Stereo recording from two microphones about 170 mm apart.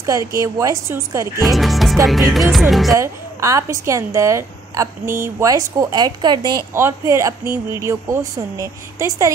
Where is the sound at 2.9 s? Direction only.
20° right (ahead or behind).